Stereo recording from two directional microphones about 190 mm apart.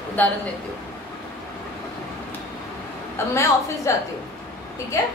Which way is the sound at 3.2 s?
15° left (ahead or behind).